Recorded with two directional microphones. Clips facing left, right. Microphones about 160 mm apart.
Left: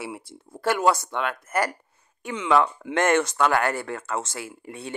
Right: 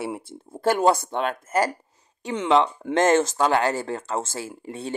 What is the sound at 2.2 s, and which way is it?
Speech, 40° right (ahead or behind).